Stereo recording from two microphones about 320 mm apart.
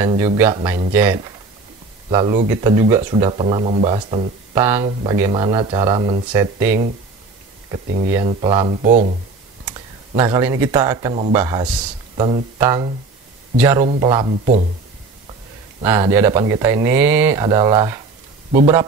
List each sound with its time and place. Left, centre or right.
0.1 s speech: centre
7.7 s speech: right
15.8 s speech: centre